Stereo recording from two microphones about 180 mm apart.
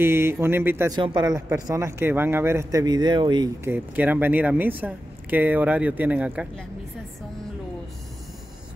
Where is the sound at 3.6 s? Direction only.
10° right (ahead or behind).